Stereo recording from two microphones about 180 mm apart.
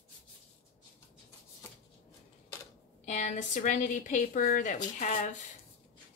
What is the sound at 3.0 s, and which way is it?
A woman's voice, 45° left (ahead or behind).